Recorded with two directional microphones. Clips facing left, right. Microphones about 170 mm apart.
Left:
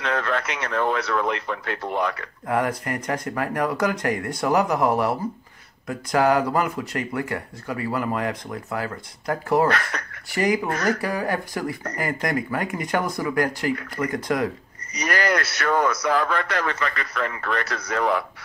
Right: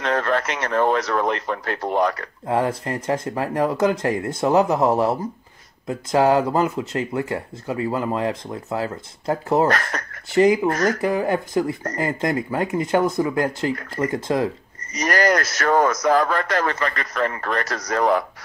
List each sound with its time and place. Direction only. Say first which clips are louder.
0.0 s a man's voice: right 4 dB; 40° right (ahead or behind)
2.4 s speech: right 2 dB; 25° right (ahead or behind)
9.7 s speech: right 2 dB; 40° right (ahead or behind)
10.3 s speech: right 6 dB; 25° right (ahead or behind)
15.0 s a man's voice: right 4 dB; 40° right (ahead or behind)